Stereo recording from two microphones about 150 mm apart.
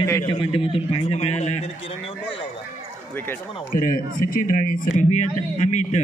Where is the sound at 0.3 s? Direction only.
35° left (ahead or behind).